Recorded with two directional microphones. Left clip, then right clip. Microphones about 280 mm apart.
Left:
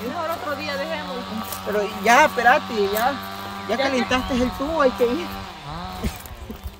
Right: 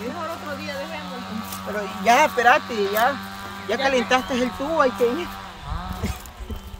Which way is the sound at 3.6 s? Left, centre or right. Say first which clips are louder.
Right 1 dB; centre.